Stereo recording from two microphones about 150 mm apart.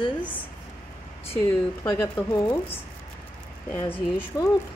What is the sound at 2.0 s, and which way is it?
Speech, 20° left (ahead or behind).